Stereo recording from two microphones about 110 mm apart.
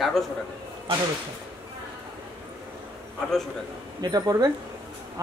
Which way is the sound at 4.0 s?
35° right (ahead or behind).